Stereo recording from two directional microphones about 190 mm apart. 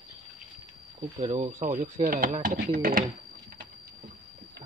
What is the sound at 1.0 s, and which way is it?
Speech, 35° right (ahead or behind).